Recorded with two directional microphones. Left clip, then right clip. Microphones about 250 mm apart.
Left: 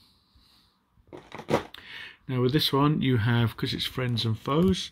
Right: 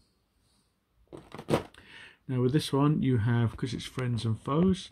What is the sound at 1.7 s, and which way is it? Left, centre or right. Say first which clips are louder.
Speech: left 8 dB; centre.